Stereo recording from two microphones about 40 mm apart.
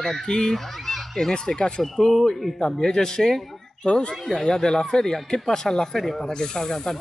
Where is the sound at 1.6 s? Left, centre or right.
Left.